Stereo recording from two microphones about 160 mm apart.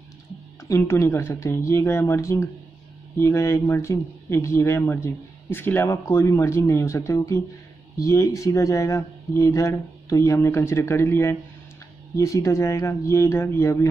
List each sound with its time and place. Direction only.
0.7 s speech: 20° left (ahead or behind)